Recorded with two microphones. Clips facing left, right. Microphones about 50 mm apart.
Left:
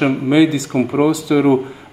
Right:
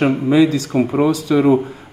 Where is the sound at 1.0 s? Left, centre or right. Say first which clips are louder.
Left 2 dB; left.